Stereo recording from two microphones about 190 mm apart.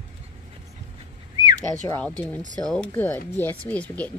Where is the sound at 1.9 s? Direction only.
10° left (ahead or behind).